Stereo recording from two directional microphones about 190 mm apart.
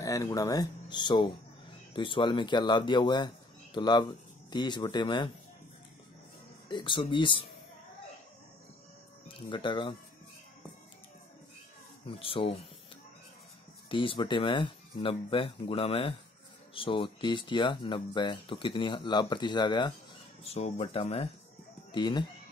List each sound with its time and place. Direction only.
0.0 s speech: 15° left (ahead or behind)
6.7 s speech: 25° left (ahead or behind)
9.5 s speech: 25° left (ahead or behind)
12.1 s speech: 30° left (ahead or behind)
13.8 s speech: 25° left (ahead or behind)
20.4 s speech: 35° left (ahead or behind)